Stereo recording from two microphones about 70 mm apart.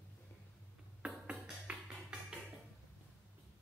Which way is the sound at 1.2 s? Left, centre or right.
Centre.